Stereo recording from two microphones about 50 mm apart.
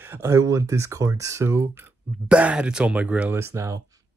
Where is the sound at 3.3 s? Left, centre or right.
Right.